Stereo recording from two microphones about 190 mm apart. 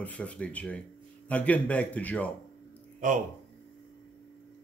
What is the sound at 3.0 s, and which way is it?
Speech, 40° right (ahead or behind).